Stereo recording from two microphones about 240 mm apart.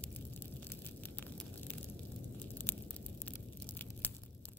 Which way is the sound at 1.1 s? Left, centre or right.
Centre.